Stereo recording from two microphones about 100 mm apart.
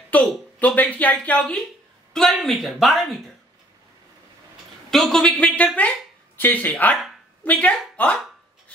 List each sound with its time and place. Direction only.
0.1 s speech: 15° left (ahead or behind)
2.1 s a man's voice: 5° left (ahead or behind)
4.9 s speech: 5° left (ahead or behind)
7.9 s a sound: 15° left (ahead or behind)